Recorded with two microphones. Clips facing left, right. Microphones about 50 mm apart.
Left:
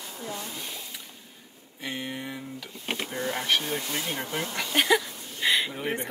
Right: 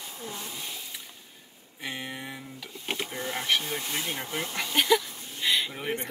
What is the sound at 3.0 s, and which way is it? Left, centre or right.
Power windows, left.